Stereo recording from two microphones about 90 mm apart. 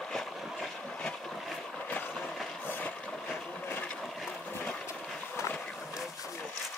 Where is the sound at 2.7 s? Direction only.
20° left (ahead or behind).